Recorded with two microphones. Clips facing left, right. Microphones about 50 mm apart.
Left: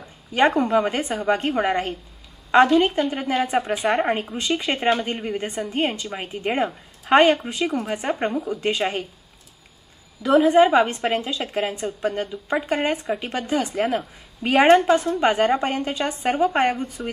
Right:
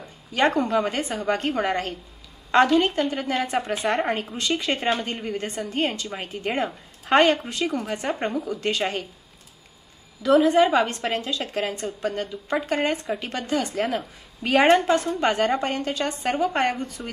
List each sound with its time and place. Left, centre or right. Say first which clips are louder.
0.6 s a woman's voice: left 3 dB; centre
10.2 s a woman's voice: left 2 dB; centre